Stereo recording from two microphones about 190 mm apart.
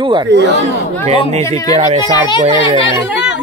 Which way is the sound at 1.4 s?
15° left (ahead or behind).